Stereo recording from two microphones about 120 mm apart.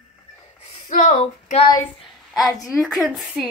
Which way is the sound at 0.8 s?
80° left.